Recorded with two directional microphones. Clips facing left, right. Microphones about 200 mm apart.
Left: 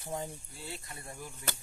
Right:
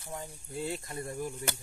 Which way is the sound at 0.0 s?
20° left (ahead or behind).